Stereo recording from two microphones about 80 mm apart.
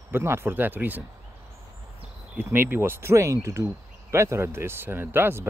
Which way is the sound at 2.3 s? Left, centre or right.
Right.